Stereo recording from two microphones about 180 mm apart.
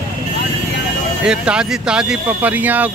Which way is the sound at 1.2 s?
5° right (ahead or behind).